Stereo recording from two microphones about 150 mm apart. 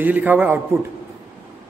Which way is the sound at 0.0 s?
10° right (ahead or behind).